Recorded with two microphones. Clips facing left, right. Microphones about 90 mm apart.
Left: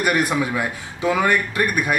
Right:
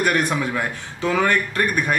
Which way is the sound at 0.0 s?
5° left (ahead or behind).